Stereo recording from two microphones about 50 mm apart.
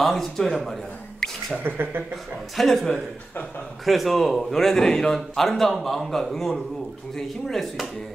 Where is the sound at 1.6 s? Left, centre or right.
Right.